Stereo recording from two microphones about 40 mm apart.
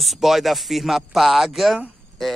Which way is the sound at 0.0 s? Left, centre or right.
Centre.